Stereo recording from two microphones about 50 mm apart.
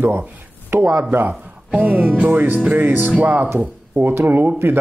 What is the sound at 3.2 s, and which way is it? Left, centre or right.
Music, right.